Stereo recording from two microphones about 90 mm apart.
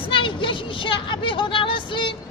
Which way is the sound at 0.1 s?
70° left (ahead or behind).